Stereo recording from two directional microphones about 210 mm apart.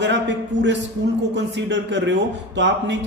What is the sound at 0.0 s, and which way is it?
Speech, 55° right (ahead or behind).